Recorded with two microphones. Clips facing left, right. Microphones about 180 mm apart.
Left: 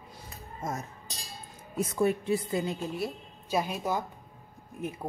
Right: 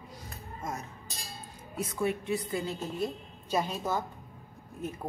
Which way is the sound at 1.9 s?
40° left (ahead or behind).